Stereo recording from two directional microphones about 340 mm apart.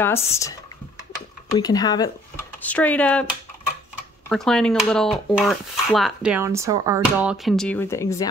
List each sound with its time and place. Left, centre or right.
0.0 s speech: centre